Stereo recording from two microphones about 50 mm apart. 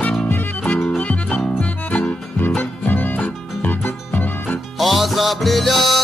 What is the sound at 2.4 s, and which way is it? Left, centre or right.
Music, left.